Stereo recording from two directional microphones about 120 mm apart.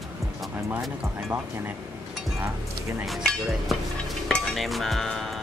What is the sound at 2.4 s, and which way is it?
Speech, 15° right (ahead or behind).